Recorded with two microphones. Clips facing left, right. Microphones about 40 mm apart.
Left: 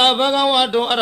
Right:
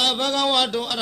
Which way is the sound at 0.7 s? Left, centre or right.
Left.